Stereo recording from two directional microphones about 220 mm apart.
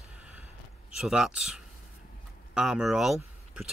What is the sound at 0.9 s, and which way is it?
Speech, centre (ahead or behind).